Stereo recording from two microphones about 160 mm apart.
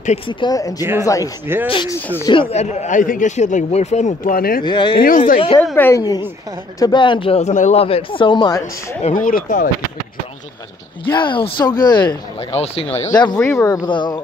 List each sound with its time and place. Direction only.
0.3 s speech: 25° left (ahead or behind); by 4.6 s 65° left (ahead or behind)
4.6 s speech: 30° left (ahead or behind)
4.9 s speech: 60° left (ahead or behind)
5.8 s speech: 15° left (ahead or behind)
9.0 s speech: 60° left (ahead or behind)
11.1 s speech: 30° left (ahead or behind)
12.5 s speech: 40° left (ahead or behind)
13.4 s speech: 20° left (ahead or behind)
13.8 s speech: 30° left (ahead or behind)